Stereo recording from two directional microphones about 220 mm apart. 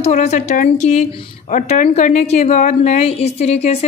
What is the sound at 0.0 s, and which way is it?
A woman's voice, 30° left (ahead or behind).